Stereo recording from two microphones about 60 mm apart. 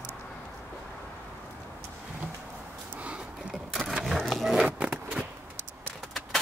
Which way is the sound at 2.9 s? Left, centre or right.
Right.